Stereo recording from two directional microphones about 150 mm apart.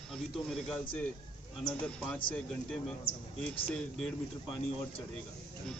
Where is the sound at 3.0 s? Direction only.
35° left (ahead or behind).